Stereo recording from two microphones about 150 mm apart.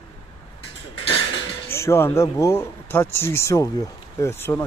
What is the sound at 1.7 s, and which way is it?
Speech, 15° left (ahead or behind).